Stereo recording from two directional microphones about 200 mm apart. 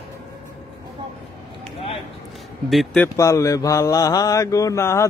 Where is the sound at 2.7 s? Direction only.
Centre (ahead or behind).